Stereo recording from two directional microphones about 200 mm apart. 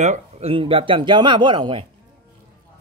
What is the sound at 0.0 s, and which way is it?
Speech, 35° right (ahead or behind).